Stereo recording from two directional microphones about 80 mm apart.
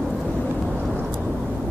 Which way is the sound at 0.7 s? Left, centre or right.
Centre.